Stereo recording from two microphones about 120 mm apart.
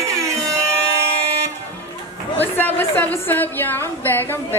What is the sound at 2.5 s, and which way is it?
A woman's voice, 15° left (ahead or behind).